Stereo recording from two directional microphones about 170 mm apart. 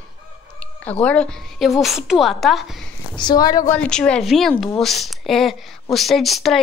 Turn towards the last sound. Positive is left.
turn(degrees=0)  # may be behind; listen again after turning